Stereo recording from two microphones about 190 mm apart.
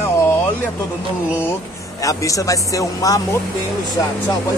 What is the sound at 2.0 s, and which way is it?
Speech, 15° left (ahead or behind).